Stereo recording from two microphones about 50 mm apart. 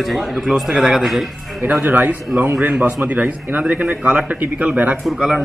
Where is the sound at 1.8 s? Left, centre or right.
Right.